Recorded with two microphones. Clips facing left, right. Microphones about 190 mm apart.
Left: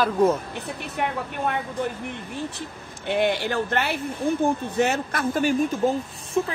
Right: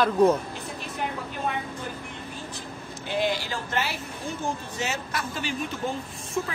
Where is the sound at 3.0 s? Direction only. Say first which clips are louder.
Left 5 dB; 60° left (ahead or behind).